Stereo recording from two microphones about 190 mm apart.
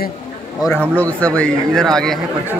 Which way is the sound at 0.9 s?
5° left (ahead or behind).